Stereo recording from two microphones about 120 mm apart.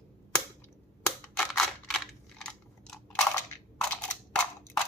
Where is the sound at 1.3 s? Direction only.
Centre (ahead or behind).